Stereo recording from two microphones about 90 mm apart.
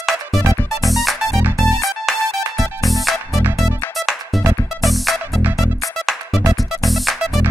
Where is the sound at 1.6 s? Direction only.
35° left (ahead or behind).